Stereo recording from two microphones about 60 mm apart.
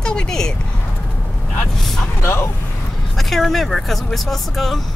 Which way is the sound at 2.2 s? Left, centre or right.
Left.